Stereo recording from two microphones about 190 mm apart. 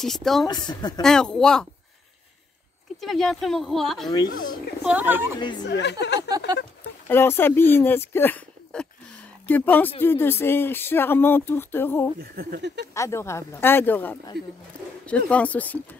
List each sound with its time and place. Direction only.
0.0 s speech: centre (ahead or behind)
0.5 s a woman's voice: 20° left (ahead or behind)
1.0 s speech: 5° left (ahead or behind)
3.0 s speech: centre (ahead or behind)
5.7 s a woman's voice: 65° left (ahead or behind)
7.1 s speech: 10° left (ahead or behind)
12.2 s speech: 55° right (ahead or behind)
12.9 s speech: 15° left (ahead or behind)
14.3 s speech: centre (ahead or behind)